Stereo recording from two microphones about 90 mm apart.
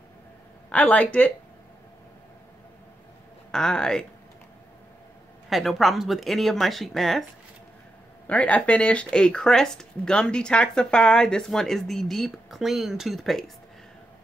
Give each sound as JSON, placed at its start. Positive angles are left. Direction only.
{"t": 0.7, "sound": "speech", "side_deg": 15}
{"t": 3.5, "sound": "speech", "side_deg": 5}
{"t": 5.5, "sound": "speech", "side_deg": 0}
{"t": 8.3, "sound": "speech", "side_deg": 15}